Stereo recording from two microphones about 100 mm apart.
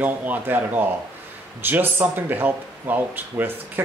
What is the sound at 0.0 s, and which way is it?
Speech, 15° right (ahead or behind).